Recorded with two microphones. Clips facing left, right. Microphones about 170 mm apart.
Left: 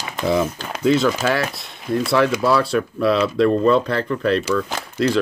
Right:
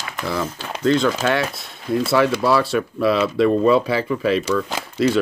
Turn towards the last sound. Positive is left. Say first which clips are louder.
# right 1 dB
turn(degrees=0)  # may be behind; listen again after turning